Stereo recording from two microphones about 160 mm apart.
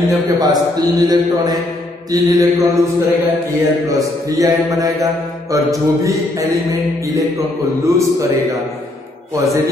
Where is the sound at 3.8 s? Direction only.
20° right (ahead or behind).